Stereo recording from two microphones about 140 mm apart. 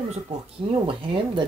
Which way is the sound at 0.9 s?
40° right (ahead or behind).